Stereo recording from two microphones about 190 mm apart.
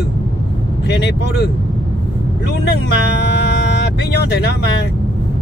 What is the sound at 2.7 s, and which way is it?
Speech, 60° left (ahead or behind).